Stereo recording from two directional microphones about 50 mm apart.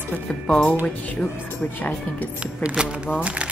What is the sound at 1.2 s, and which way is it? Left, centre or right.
Speech, left.